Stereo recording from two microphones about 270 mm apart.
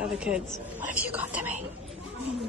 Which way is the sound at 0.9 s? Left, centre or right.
Centre.